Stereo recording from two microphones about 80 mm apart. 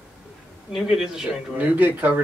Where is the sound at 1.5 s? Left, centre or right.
Right.